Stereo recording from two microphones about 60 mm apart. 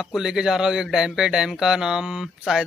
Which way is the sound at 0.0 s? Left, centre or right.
Centre.